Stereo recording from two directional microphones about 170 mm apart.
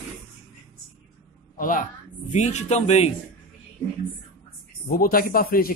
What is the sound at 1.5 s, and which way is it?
A man's voice, 55° left (ahead or behind).